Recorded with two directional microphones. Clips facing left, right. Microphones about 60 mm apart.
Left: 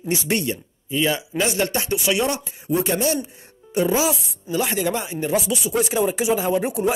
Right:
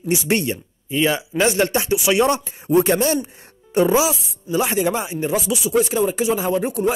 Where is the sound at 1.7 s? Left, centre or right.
Centre.